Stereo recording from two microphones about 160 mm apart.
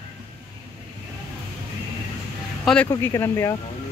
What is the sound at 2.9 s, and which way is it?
Speech, 15° left (ahead or behind).